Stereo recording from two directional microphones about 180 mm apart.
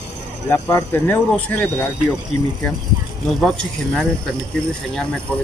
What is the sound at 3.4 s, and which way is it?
Speech, centre (ahead or behind).